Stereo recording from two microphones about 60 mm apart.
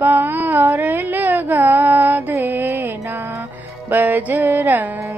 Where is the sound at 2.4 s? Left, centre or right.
Right.